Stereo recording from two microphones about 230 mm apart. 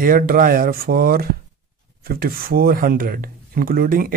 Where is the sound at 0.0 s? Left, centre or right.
Right.